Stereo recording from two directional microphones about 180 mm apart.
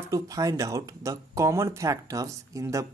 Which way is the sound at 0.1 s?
20° right (ahead or behind).